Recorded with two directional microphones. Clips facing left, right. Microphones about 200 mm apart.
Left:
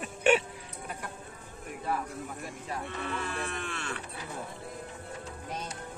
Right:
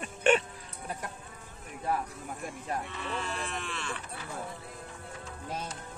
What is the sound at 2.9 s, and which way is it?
Speech, 55° left (ahead or behind).